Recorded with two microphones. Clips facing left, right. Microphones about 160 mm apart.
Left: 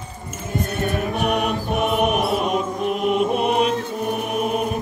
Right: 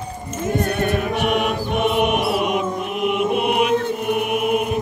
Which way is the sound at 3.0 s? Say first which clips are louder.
Right 1 dB; 35° left (ahead or behind).